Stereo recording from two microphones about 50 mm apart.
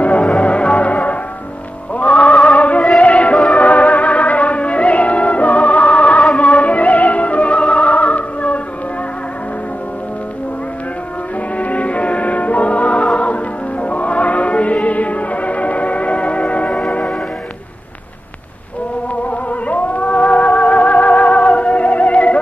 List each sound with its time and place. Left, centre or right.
0.0 s music: left
2.0 s a sound: left
3.0 s music: left
11.5 s music: left
19.7 s music: left